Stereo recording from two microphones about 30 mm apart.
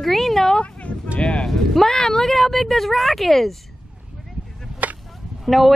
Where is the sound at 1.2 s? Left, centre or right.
Left.